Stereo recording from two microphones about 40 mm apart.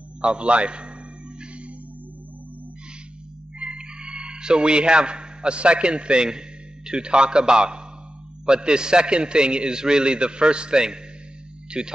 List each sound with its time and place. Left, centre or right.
0.2 s a man's voice: right
3.5 s a sound: right
6.9 s a man's voice: right